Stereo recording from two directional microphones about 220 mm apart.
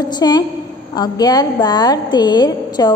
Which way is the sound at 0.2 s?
20° left (ahead or behind).